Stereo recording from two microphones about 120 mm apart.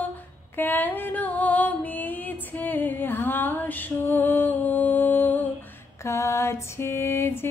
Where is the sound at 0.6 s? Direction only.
15° left (ahead or behind).